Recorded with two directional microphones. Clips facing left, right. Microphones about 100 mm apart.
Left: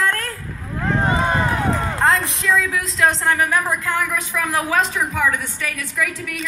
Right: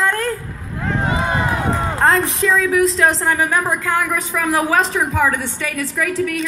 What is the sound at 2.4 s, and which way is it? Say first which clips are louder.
A woman's voice: right 5 dB; 25° right (ahead or behind).